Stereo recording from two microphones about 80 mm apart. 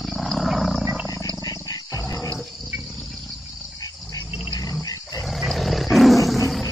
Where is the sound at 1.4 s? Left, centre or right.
Left.